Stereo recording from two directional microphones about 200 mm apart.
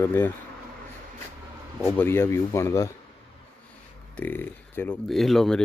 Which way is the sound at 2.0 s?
10° left (ahead or behind).